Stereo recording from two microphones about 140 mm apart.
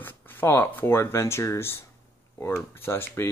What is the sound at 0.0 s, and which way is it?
Speech, 15° left (ahead or behind).